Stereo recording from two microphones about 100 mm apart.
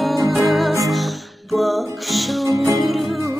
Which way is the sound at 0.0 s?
Centre (ahead or behind).